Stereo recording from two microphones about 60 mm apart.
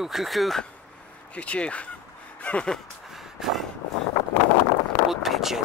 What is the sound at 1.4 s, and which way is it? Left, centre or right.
Speech, left.